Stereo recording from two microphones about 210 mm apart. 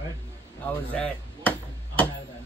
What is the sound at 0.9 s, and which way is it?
Chop, 5° left (ahead or behind).